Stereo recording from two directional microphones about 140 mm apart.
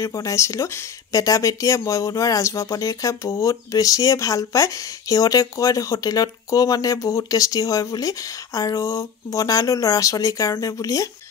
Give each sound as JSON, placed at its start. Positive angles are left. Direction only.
{"t": 0.0, "sound": "speech", "side_deg": 20}